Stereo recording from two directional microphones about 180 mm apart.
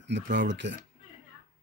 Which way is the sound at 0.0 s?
75° right (ahead or behind).